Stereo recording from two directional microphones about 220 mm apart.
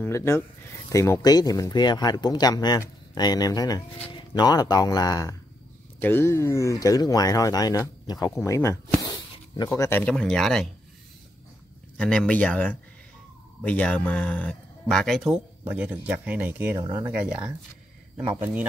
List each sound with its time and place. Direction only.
0.0 s speech: 10° left (ahead or behind)
12.0 s speech: 5° left (ahead or behind); by 17.1 s 15° right (ahead or behind)
18.4 s speech: 5° right (ahead or behind)